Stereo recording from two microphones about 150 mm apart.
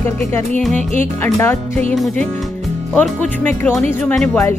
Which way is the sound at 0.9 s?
15° left (ahead or behind).